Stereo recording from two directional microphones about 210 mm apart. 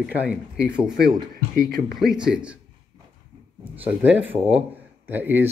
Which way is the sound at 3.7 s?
10° right (ahead or behind).